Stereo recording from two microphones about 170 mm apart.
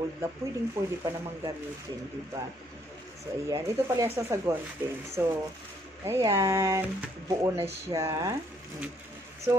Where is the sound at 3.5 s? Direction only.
20° right (ahead or behind).